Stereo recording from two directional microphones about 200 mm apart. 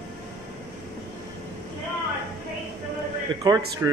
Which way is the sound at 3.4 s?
20° right (ahead or behind).